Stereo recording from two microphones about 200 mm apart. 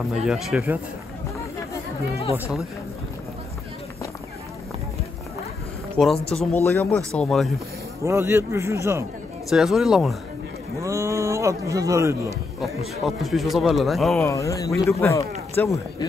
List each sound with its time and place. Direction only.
0.1 s speech: 5° right (ahead or behind)
6.1 s speech: 30° left (ahead or behind)
6.5 s speech: 10° left (ahead or behind)
8.0 s speech: 15° right (ahead or behind)
9.5 s speech: centre (ahead or behind)
10.8 s speech: 15° right (ahead or behind)
12.5 s speech: centre (ahead or behind)
14.2 s speech: 15° left (ahead or behind)